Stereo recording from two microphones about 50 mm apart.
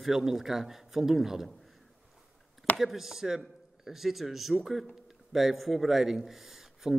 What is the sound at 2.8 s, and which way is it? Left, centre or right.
A man's voice, centre.